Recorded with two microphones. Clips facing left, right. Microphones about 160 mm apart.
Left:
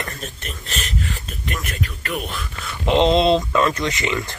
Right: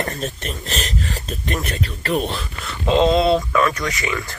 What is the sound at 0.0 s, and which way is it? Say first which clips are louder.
Speech: right 6 dB; 35° right (ahead or behind).